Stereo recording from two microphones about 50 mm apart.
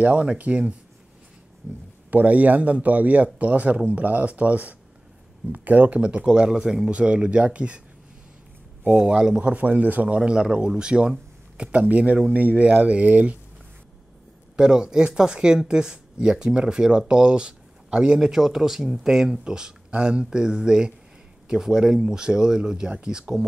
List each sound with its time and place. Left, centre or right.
0.0 s speech: right
2.0 s a man's voice: right
5.9 s speech: right
8.8 s speech: right
9.5 s a man's voice: right
10.1 s a man's voice: centre
14.6 s speech: centre